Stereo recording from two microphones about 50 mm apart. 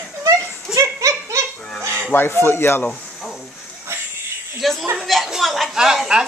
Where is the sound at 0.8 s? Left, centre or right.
Right.